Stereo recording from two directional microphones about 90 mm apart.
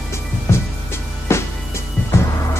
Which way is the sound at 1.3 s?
30° left (ahead or behind).